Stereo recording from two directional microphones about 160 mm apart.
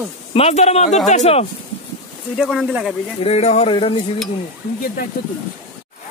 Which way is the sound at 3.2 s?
40° left (ahead or behind).